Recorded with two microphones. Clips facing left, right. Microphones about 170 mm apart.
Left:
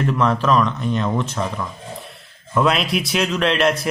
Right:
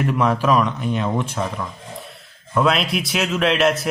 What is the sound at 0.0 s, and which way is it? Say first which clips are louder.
Speech: even; 10° right (ahead or behind).